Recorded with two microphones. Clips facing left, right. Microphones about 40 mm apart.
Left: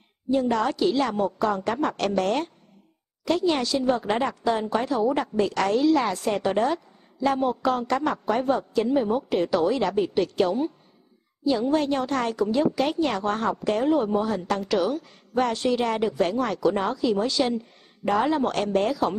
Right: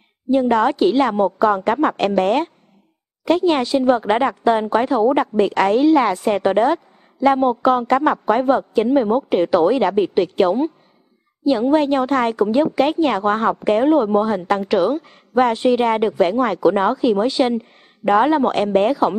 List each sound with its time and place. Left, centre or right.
0.3 s speech: right